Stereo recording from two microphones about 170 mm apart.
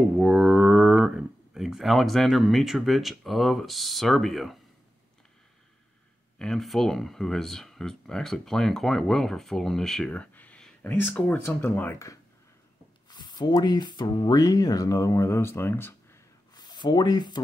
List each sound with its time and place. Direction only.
0.2 s speech: 5° right (ahead or behind)
6.3 s speech: 5° left (ahead or behind)
13.1 s speech: 25° left (ahead or behind)
16.5 s speech: 25° left (ahead or behind)